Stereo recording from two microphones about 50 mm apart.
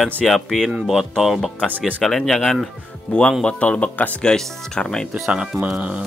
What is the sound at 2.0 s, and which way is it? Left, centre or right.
Speech, centre.